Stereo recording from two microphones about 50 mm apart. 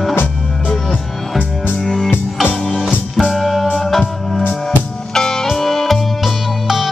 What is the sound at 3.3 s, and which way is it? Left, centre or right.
Music, centre.